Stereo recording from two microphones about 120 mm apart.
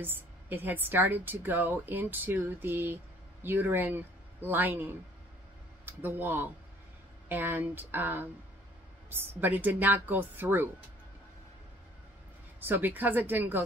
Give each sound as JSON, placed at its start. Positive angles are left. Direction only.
{"t": 0.0, "sound": "a woman's voice", "side_deg": -15}
{"t": 12.5, "sound": "a woman's voice", "side_deg": -15}